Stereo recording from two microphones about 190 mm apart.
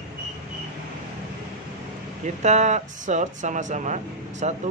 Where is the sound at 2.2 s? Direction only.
40° right (ahead or behind).